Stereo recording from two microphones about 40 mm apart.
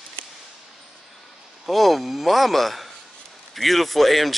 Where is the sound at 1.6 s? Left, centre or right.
Centre.